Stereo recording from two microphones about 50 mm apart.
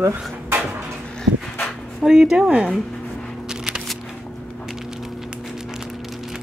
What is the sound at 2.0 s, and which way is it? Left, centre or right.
Speech, centre.